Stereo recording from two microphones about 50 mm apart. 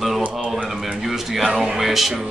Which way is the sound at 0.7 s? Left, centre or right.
Centre.